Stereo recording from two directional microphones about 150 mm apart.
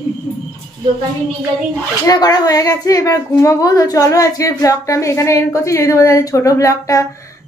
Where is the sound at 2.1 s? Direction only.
25° left (ahead or behind).